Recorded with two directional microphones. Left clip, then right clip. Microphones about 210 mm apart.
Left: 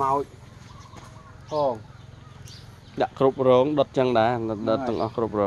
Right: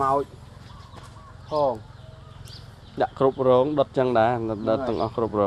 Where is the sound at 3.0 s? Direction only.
10° left (ahead or behind).